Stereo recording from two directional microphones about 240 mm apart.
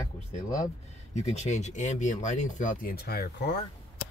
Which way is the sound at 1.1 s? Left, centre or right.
Left.